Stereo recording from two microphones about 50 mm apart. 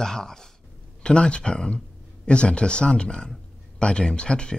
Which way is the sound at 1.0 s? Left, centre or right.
Centre.